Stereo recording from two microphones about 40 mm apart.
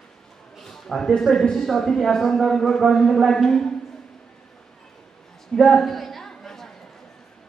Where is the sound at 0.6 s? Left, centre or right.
Centre.